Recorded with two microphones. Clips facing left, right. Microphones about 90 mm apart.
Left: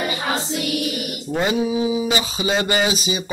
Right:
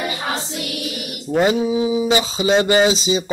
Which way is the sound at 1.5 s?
35° right (ahead or behind).